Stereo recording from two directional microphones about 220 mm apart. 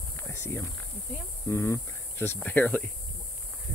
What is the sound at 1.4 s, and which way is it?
Speech, 10° left (ahead or behind).